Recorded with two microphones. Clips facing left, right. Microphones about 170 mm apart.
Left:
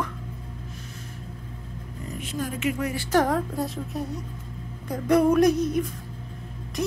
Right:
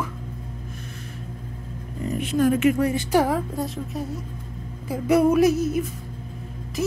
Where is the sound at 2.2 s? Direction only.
65° right (ahead or behind).